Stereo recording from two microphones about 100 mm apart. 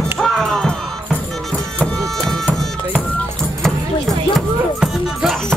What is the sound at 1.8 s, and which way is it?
Music, 15° left (ahead or behind).